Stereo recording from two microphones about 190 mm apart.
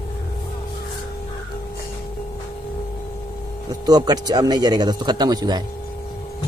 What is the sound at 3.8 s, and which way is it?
Speech, 20° right (ahead or behind).